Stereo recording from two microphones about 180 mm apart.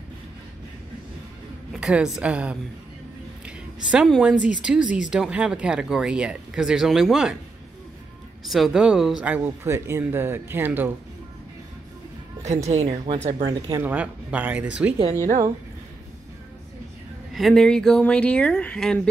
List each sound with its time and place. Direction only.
1.7 s a woman's voice: 5° right (ahead or behind)
8.5 s speech: centre (ahead or behind)
12.6 s speech: 35° right (ahead or behind)
13.5 s speech: 20° right (ahead or behind)
17.3 s speech: centre (ahead or behind)